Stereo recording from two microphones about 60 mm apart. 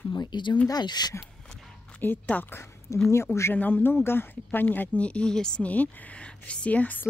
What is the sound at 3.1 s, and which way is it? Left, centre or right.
Speech, left.